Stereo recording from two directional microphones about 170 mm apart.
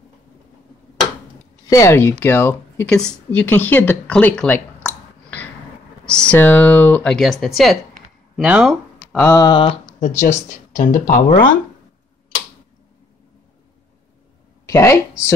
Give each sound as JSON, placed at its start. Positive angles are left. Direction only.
{"t": 1.7, "sound": "speech", "side_deg": 15}
{"t": 4.8, "sound": "clicking", "side_deg": 10}
{"t": 6.0, "sound": "speech", "side_deg": 5}
{"t": 9.1, "sound": "a sound", "side_deg": 15}
{"t": 9.9, "sound": "speech", "side_deg": 45}
{"t": 14.7, "sound": "speech", "side_deg": 15}